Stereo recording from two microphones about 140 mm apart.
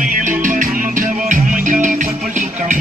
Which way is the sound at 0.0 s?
75° right (ahead or behind).